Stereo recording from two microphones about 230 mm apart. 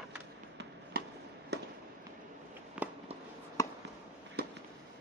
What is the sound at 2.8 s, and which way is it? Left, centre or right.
Fireworks, centre.